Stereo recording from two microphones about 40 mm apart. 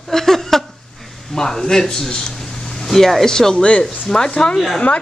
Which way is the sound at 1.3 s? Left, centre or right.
Centre.